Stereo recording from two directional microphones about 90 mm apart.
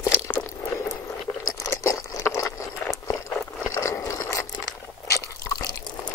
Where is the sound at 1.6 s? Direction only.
35° left (ahead or behind).